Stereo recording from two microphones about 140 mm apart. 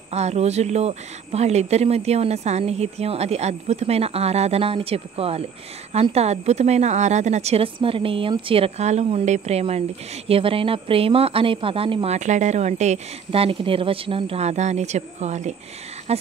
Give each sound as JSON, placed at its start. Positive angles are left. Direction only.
{"t": 0.1, "sound": "a woman's voice", "side_deg": -50}